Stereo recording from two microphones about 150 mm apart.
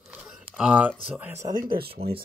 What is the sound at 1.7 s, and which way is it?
Speech, 90° right.